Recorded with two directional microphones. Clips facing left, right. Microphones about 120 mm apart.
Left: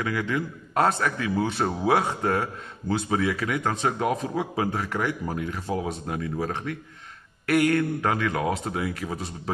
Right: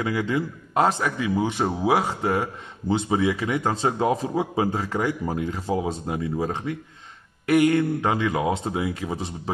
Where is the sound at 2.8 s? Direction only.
20° right (ahead or behind).